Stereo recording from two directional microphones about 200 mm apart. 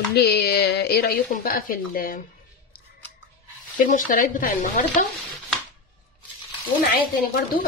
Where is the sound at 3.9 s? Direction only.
40° left (ahead or behind).